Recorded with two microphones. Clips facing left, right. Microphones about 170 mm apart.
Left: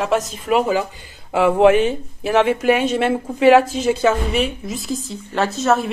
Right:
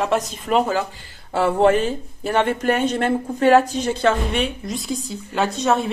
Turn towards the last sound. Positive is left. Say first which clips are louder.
# left 2 dB
turn(degrees=0)  # may be behind; listen again after turning